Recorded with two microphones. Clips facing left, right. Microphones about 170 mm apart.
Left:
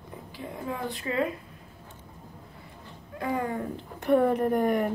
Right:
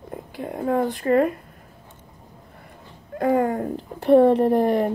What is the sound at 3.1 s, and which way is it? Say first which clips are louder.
Speech: right 9 dB; 50° right (ahead or behind).